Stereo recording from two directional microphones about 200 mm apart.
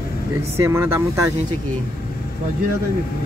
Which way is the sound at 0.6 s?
10° right (ahead or behind).